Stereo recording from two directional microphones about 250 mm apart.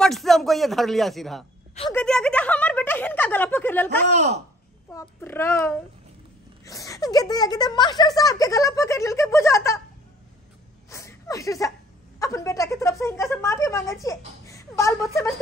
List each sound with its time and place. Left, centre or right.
0.0 s speech: centre
4.1 s speech: right
4.9 s speech: centre
10.9 s chuckle: centre
12.2 s speech: centre
14.0 s a sound: centre